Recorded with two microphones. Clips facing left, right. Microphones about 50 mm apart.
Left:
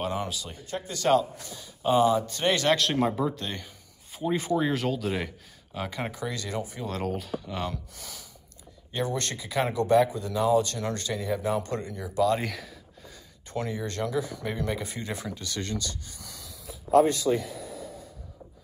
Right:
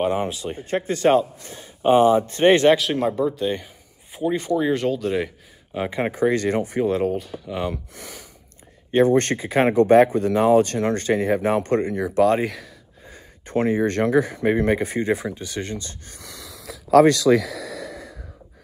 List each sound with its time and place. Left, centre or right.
0.0 s speech: right
2.7 s speech: centre
3.4 s a sound: centre
4.2 s speech: centre
5.7 s speech: right
6.9 s speech: centre
7.7 s speech: right
12.4 s speech: centre
13.1 s speech: right
16.1 s a sound: right